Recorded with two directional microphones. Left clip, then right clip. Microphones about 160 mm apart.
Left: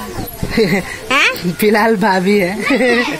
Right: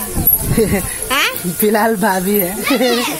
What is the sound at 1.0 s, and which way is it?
Speech, 40° left (ahead or behind).